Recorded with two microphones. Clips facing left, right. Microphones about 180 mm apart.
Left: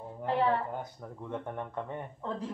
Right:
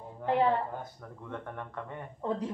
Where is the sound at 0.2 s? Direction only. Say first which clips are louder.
Right 2 dB; 20° right (ahead or behind).